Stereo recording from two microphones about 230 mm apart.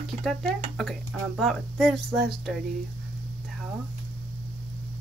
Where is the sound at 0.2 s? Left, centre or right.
Centre.